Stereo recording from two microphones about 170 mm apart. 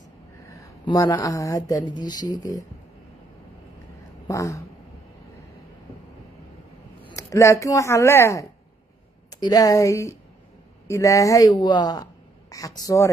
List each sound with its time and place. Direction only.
0.5 s a woman's voice: 20° left (ahead or behind)
4.3 s speech: 20° left (ahead or behind)
7.1 s a woman's voice: 20° left (ahead or behind)